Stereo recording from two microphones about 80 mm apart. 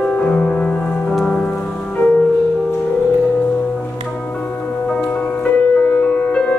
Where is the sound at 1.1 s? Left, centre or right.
Centre.